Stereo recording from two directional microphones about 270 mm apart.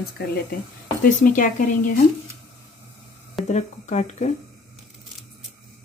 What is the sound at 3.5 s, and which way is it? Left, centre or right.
Speech, left.